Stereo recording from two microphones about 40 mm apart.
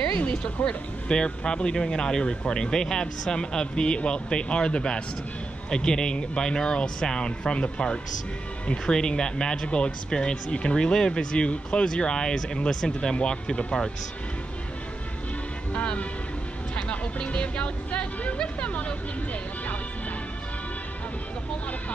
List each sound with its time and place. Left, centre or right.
0.1 s speech: left
0.7 s speech: left
15.7 s speech: left